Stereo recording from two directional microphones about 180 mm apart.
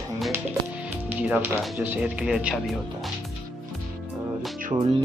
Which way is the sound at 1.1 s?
10° right (ahead or behind).